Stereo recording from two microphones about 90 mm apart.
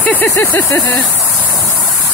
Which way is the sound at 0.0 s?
20° left (ahead or behind).